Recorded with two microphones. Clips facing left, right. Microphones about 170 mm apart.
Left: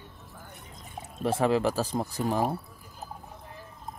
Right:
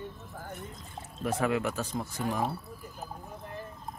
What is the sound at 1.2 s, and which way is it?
Speech, 30° left (ahead or behind).